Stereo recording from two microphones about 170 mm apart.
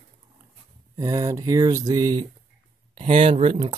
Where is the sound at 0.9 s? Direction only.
20° right (ahead or behind).